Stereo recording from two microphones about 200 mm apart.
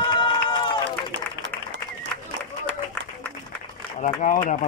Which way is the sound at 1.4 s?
65° right (ahead or behind).